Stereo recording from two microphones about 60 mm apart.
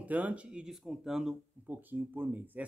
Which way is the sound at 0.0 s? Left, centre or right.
Right.